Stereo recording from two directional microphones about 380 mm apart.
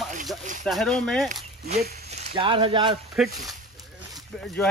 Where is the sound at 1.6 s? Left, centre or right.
Right.